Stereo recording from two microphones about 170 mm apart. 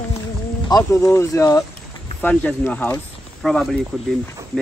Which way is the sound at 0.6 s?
20° left (ahead or behind).